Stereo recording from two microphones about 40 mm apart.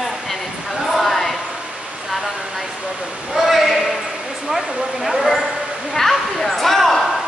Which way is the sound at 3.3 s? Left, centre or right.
Centre.